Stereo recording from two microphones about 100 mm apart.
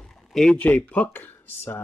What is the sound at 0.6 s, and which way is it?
Speech, 15° left (ahead or behind).